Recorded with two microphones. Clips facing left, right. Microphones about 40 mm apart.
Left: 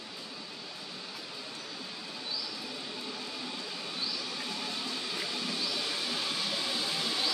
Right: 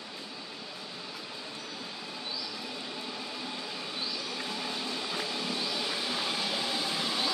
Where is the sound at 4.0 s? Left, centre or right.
Centre.